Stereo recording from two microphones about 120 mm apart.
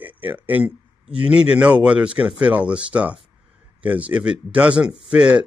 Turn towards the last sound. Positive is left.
turn(degrees=-10)  # may be behind; listen again after turning